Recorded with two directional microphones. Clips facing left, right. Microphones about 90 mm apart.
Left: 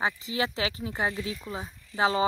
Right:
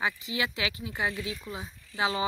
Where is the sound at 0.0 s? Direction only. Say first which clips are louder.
Left 2 dB; 35° left (ahead or behind).